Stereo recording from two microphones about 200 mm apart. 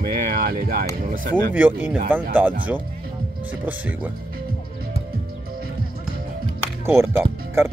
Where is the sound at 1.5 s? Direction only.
10° right (ahead or behind).